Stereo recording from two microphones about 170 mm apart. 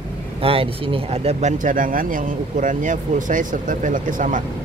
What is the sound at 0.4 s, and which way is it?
Speech, 35° right (ahead or behind).